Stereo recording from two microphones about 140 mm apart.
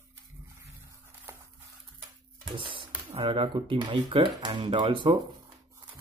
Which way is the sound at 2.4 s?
35° right (ahead or behind).